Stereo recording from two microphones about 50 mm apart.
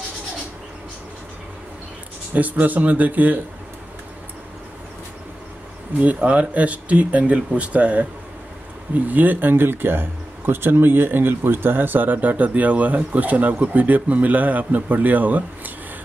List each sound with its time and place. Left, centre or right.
2.3 s speech: right
5.9 s speech: right